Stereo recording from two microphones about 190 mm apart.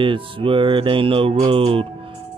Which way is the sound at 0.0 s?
25° right (ahead or behind).